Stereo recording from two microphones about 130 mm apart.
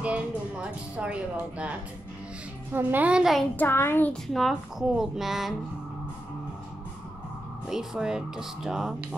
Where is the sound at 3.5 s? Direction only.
20° left (ahead or behind).